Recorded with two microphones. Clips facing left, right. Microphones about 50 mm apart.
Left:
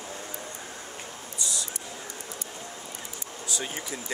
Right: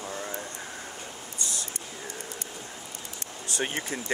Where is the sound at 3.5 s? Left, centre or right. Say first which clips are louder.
Right 4 dB; right.